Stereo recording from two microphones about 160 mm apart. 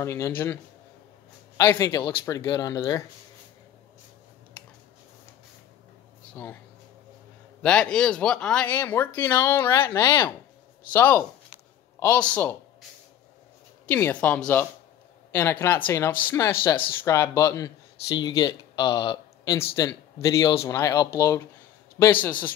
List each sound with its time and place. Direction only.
0.0 s speech: 15° left (ahead or behind)
1.6 s speech: 15° left (ahead or behind)
6.3 s speech: 15° left (ahead or behind)
7.6 s speech: 5° left (ahead or behind)
13.8 s speech: 10° left (ahead or behind)